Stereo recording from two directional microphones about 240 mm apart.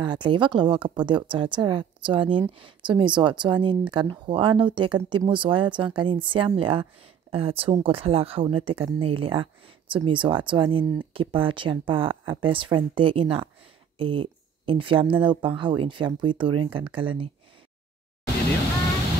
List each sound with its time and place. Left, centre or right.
0.0 s speech: centre